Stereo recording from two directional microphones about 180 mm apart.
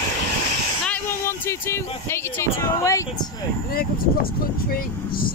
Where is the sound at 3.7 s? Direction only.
55° left (ahead or behind).